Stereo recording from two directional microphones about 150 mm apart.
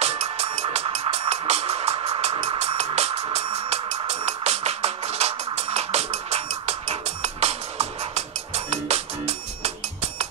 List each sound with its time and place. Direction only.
0.0 s music: 45° right (ahead or behind)